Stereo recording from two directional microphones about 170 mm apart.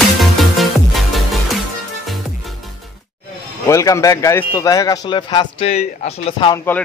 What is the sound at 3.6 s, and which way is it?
A man's voice, 20° left (ahead or behind).